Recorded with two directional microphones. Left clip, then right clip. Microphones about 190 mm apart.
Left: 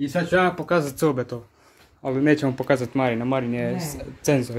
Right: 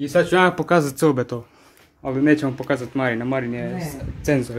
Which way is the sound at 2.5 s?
30° left (ahead or behind).